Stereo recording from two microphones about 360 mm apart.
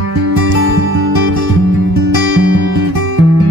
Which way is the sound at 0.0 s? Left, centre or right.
Right.